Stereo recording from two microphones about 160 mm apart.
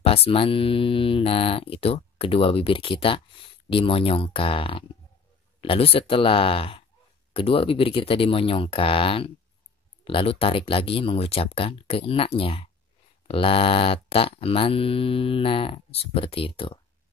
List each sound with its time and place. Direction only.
0.0 s mantra: 35° left (ahead or behind)